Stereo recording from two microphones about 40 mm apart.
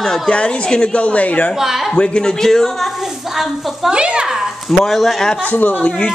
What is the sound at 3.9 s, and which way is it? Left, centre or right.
Speech, right.